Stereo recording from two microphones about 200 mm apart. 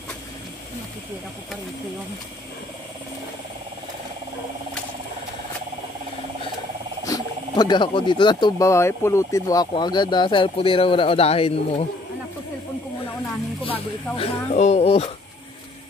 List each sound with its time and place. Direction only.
7.1 s speech: 20° left (ahead or behind)
13.7 s speech: 30° left (ahead or behind)